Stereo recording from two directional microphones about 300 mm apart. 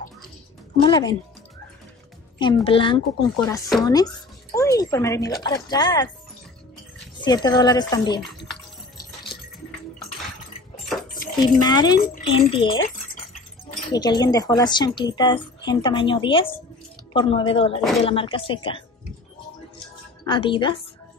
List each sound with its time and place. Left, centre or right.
0.8 s speech: centre
2.3 s speech: centre
7.2 s speech: centre
11.6 s speech: centre
13.9 s speech: centre
20.2 s speech: centre